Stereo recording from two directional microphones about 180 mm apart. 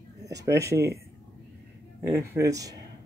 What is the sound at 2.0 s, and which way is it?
Speech, 10° right (ahead or behind).